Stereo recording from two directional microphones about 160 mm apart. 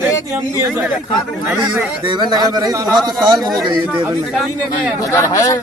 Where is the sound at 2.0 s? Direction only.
30° right (ahead or behind).